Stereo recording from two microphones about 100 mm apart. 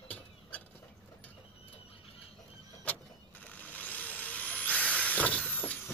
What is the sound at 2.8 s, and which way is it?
Vehicle, 15° left (ahead or behind).